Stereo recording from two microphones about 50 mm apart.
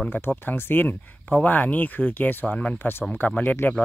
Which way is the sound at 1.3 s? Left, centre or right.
Left.